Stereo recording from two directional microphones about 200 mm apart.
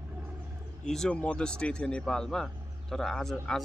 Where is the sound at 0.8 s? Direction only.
5° left (ahead or behind).